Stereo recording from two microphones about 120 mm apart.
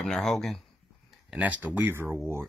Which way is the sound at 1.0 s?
10° right (ahead or behind).